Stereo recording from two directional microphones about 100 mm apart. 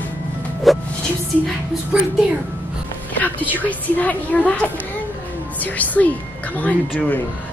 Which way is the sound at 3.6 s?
15° left (ahead or behind).